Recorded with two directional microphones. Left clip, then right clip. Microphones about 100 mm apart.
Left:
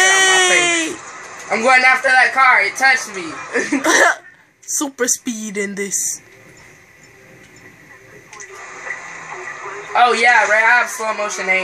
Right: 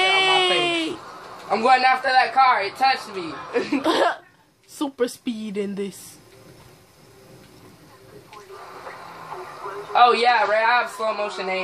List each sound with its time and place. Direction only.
0.0 s a sound: 10° left (ahead or behind)
1.5 s speech: 45° left (ahead or behind)
2.9 s speech: 20° left (ahead or behind)
8.5 s a sound: 20° left (ahead or behind)
9.4 s radio: 25° left (ahead or behind)
9.9 s speech: 40° left (ahead or behind)